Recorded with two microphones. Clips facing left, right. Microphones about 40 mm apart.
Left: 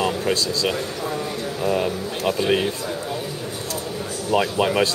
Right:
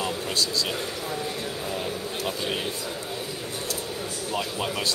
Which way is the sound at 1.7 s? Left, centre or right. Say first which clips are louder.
Left 11 dB; left.